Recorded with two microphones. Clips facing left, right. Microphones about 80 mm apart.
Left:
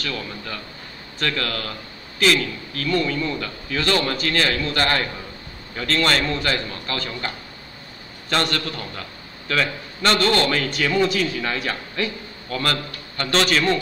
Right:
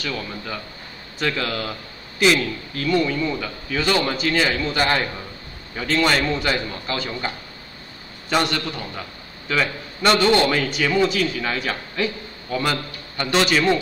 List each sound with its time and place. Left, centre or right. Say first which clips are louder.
0.0 s a man's voice: right 1 dB; centre
12.4 s a man's voice: right 1 dB; centre